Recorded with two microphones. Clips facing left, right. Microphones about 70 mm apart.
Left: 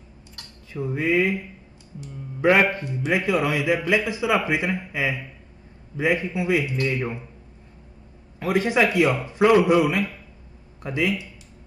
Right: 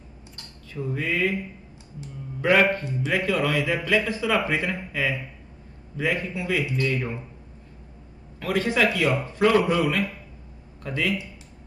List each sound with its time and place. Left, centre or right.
0.7 s a man's voice: centre
2.4 s a man's voice: centre
8.4 s a man's voice: centre